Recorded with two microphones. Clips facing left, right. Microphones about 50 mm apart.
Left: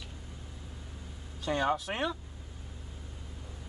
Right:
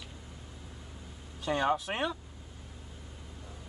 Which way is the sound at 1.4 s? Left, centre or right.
Centre.